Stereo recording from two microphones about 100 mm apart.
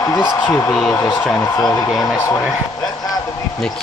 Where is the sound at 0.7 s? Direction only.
5° left (ahead or behind).